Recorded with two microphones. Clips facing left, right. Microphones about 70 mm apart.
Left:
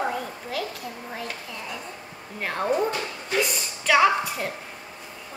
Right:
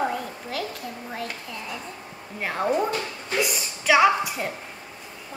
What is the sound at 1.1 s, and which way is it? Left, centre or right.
A woman's voice, centre.